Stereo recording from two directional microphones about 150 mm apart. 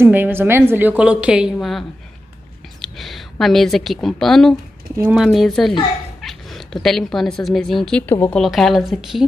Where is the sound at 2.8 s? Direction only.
Centre (ahead or behind).